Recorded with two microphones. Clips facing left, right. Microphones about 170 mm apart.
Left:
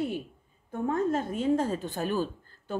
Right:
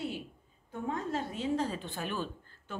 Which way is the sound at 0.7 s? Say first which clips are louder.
Left 7 dB; 50° left (ahead or behind).